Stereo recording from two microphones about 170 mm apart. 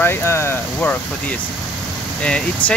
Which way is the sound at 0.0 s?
15° left (ahead or behind).